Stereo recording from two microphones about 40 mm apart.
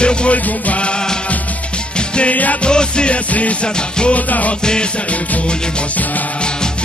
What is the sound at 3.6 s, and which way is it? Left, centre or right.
Music, left.